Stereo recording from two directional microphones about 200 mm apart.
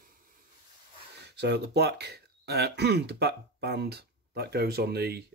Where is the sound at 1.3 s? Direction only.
55° right (ahead or behind).